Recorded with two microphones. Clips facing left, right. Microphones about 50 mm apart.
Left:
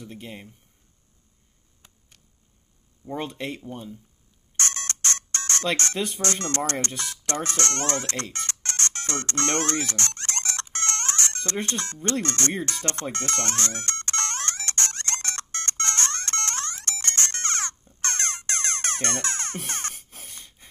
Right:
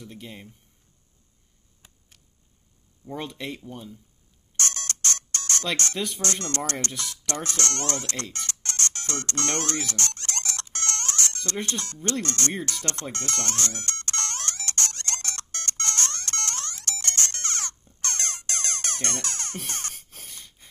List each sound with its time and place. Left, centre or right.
0.0 s speech: centre
3.1 s speech: centre
4.6 s ringtone: left
5.9 s speech: centre
6.2 s speech: left
7.2 s ringtone: left
11.6 s speech: left
13.1 s music: left
20.2 s snort: centre